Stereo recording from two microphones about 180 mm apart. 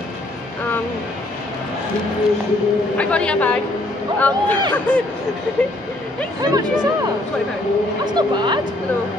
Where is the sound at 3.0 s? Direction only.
5° left (ahead or behind).